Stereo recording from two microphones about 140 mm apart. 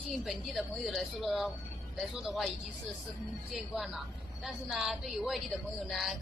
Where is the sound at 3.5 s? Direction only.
Centre (ahead or behind).